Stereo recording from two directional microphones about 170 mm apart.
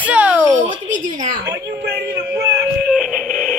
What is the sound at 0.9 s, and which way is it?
Speech, 50° right (ahead or behind).